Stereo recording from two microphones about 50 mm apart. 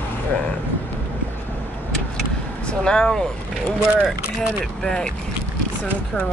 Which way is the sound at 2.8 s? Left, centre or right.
Centre.